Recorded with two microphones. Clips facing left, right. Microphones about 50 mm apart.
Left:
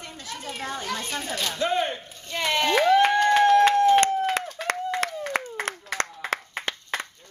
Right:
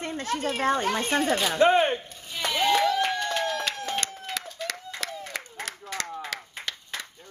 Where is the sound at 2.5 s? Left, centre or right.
Left.